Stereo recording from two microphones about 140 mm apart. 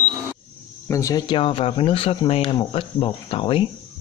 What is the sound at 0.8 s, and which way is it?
Speech, 20° left (ahead or behind).